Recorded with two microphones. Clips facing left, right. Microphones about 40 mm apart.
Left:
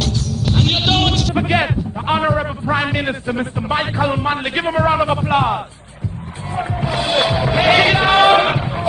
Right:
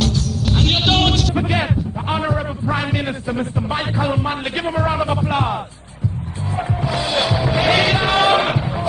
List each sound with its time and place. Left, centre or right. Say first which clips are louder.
0.0 s music: right 1 dB; centre
1.3 s a man's voice: left 3 dB; centre
6.5 s music: left 1 dB; centre